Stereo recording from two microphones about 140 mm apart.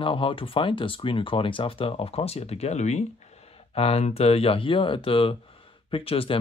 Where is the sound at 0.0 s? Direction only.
40° left (ahead or behind).